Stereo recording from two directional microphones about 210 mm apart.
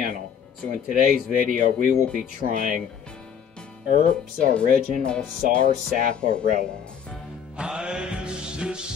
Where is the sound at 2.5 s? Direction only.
40° right (ahead or behind).